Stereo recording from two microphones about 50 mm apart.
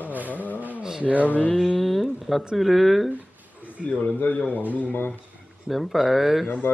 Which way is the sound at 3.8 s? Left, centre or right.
Left.